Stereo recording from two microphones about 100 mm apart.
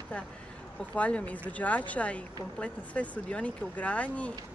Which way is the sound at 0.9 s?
15° left (ahead or behind).